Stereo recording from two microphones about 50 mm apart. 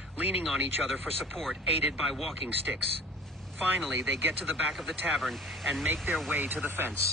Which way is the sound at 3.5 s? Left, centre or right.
Right.